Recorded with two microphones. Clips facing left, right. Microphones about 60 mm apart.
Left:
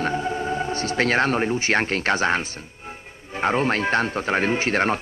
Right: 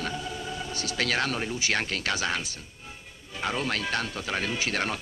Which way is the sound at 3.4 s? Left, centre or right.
Left.